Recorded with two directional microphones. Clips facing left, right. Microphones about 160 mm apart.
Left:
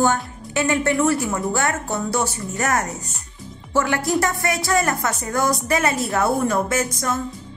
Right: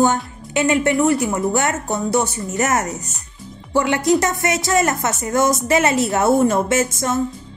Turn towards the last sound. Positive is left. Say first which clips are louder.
# right 4 dB
turn(degrees=-25)  # may be behind; listen again after turning